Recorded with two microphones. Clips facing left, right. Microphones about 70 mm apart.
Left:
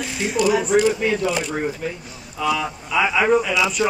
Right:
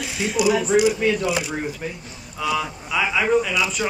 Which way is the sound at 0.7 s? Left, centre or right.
Centre.